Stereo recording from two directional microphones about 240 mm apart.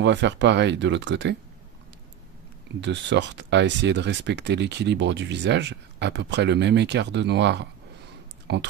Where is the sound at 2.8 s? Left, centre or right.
Right.